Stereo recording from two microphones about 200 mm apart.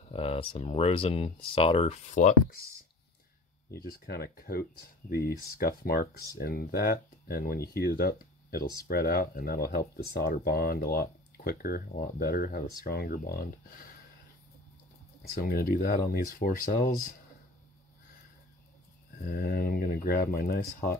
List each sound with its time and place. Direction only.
0.1 s speech: 30° left (ahead or behind)
3.8 s speech: 50° left (ahead or behind)
15.4 s speech: 45° left (ahead or behind)
19.2 s speech: 50° left (ahead or behind)